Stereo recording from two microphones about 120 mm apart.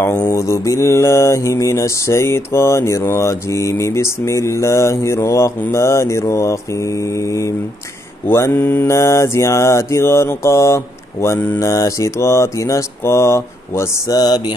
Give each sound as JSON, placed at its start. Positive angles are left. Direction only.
{"t": 0.2, "sound": "mantra", "side_deg": 25}